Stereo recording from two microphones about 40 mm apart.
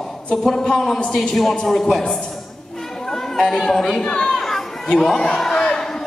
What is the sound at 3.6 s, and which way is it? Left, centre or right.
Speech, centre.